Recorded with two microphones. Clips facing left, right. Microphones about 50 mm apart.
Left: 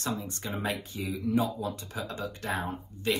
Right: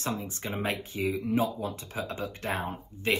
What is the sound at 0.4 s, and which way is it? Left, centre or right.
Speech, right.